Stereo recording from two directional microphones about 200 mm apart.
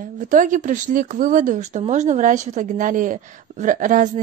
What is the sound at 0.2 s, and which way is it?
A woman's voice, 40° right (ahead or behind).